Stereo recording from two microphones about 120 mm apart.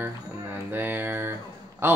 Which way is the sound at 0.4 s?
20° right (ahead or behind).